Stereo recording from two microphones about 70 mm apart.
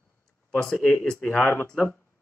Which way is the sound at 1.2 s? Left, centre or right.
Left.